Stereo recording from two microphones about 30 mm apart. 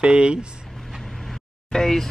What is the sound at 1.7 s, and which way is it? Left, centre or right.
Speech, centre.